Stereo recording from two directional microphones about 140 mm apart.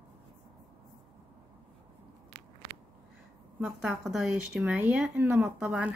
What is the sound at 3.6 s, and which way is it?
A woman's voice, 5° right (ahead or behind).